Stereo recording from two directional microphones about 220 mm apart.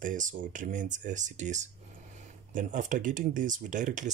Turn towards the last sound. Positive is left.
turn(degrees=-35)  # may be behind; listen again after turning